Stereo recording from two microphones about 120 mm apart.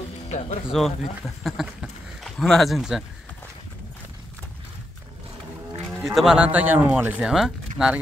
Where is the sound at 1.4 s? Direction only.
Centre (ahead or behind).